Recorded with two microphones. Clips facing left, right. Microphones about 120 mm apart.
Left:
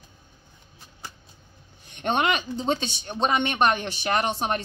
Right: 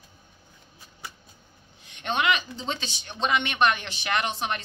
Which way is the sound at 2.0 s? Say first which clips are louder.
Left 2 dB; 45° left (ahead or behind).